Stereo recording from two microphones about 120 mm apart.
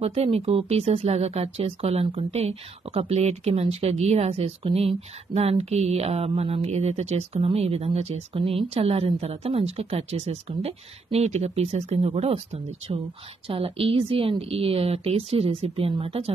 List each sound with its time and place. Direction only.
0.0 s a woman's voice: 55° right (ahead or behind)